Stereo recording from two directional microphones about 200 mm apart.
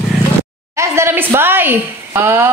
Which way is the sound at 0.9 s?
15° right (ahead or behind).